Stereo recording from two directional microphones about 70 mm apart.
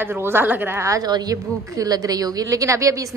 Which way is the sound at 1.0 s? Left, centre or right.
Right.